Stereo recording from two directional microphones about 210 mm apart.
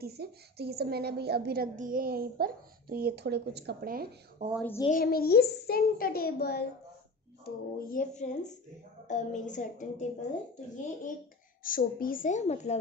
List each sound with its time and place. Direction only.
0.0 s a woman's voice: 50° right (ahead or behind)
4.6 s speech: 10° left (ahead or behind)
4.8 s a child's voice: 40° left (ahead or behind)
11.6 s speech: 40° left (ahead or behind)